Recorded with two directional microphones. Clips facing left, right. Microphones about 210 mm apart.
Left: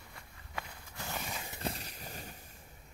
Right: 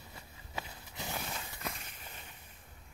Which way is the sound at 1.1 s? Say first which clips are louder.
Even; centre (ahead or behind).